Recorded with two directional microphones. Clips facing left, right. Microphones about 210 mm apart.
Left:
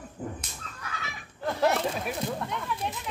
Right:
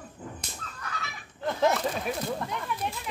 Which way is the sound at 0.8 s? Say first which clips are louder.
Right 1 dB; 5° left (ahead or behind).